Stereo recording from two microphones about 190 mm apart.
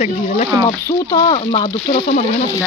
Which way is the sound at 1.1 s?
25° left (ahead or behind).